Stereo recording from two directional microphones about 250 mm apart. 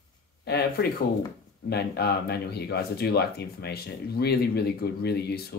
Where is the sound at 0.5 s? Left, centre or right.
Left.